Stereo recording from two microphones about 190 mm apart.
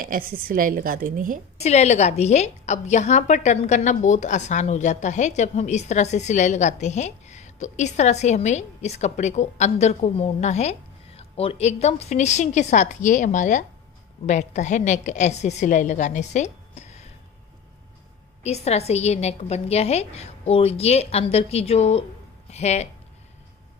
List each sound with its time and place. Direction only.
0.4 s a woman's voice: 50° right (ahead or behind)
1.6 s a woman's voice: 35° left (ahead or behind)
18.4 s a woman's voice: 35° left (ahead or behind)